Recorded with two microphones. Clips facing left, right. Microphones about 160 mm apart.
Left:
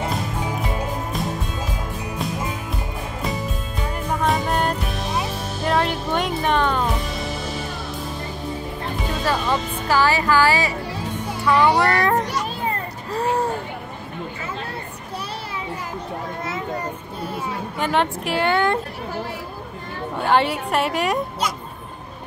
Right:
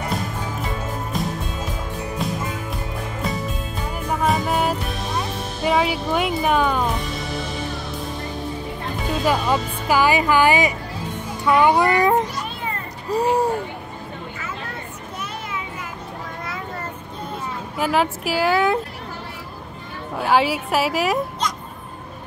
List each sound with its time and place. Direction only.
4.2 s music: 5° right (ahead or behind)
5.7 s speech: 5° right (ahead or behind)
9.2 s speech: 15° right (ahead or behind)
17.7 s speech: 5° right (ahead or behind)
20.2 s speech: 5° right (ahead or behind)